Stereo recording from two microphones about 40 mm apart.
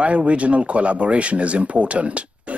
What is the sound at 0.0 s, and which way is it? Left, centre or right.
A man's voice, right.